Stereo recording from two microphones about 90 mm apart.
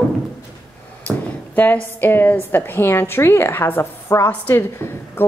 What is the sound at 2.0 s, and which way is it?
A woman's voice, 20° left (ahead or behind).